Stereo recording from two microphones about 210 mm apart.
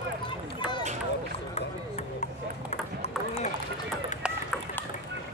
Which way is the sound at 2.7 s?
35° left (ahead or behind).